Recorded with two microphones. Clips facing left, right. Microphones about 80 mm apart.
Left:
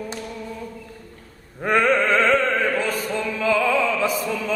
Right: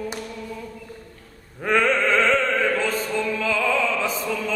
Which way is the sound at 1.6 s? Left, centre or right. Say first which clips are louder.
Left 1 dB; centre.